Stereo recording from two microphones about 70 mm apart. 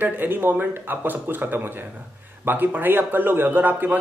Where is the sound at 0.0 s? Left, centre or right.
Right.